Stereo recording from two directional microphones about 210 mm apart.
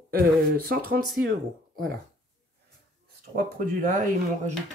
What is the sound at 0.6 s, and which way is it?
Speech, 45° right (ahead or behind).